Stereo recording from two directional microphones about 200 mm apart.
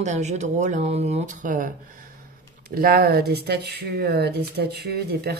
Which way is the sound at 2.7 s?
50° right (ahead or behind).